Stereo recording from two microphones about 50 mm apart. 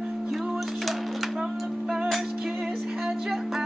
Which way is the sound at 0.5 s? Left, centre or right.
Centre.